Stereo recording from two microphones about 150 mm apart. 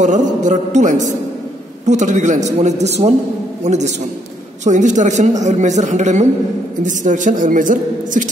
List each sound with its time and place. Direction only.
0.0 s a man's voice: 55° right (ahead or behind)